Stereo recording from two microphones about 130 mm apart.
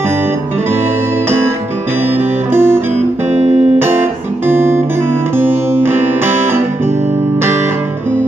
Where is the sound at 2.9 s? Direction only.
60° right (ahead or behind).